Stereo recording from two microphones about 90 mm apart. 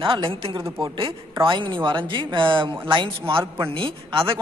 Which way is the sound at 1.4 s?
65° right (ahead or behind).